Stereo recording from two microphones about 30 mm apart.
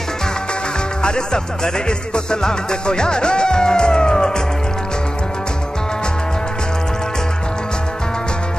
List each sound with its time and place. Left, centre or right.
1.0 s music: left